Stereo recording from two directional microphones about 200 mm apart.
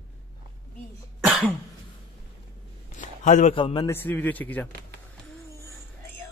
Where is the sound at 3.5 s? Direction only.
25° left (ahead or behind).